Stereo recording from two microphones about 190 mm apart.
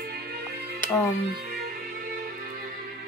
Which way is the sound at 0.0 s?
55° right (ahead or behind).